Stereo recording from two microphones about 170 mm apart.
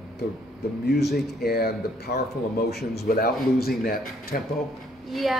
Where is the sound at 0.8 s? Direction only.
70° left (ahead or behind).